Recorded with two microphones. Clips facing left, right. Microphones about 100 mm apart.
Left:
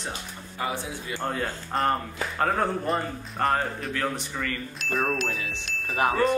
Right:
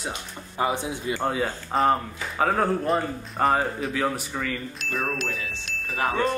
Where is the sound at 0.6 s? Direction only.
20° right (ahead or behind).